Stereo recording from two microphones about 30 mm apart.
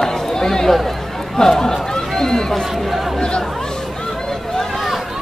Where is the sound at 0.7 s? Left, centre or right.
Centre.